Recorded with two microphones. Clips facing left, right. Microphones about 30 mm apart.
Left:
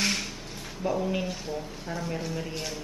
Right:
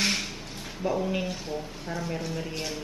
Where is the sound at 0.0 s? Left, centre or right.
Centre.